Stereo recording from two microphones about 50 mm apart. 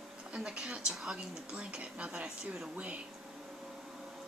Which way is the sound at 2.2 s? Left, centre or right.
Centre.